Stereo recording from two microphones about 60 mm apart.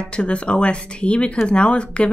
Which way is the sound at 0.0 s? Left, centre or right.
Centre.